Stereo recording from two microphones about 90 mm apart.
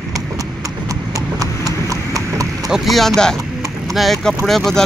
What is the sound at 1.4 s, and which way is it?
Clip-clop, 40° right (ahead or behind).